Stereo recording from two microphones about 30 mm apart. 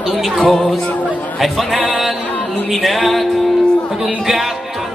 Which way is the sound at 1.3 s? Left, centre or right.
Centre.